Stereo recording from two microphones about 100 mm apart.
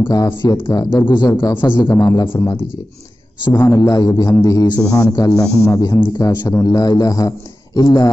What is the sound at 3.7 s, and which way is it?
Speech, 40° left (ahead or behind).